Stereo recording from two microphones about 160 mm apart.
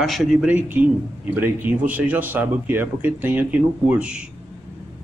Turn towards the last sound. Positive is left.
turn(degrees=-5)  # may be behind; listen again after turning